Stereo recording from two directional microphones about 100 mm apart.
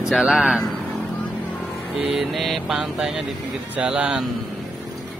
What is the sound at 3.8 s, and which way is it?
Speech, 10° right (ahead or behind).